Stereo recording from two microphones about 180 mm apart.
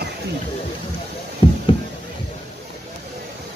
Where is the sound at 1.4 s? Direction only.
30° left (ahead or behind).